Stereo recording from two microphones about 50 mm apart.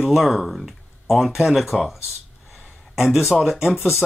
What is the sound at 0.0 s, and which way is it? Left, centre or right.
Speech, centre.